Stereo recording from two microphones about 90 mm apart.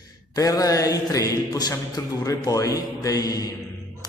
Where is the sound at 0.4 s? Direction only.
40° left (ahead or behind).